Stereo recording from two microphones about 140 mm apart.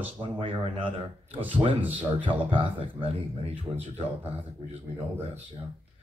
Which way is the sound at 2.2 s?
40° right (ahead or behind).